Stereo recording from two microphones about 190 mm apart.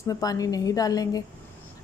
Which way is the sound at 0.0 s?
20° left (ahead or behind).